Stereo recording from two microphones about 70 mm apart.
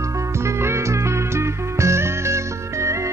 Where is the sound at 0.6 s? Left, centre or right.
Right.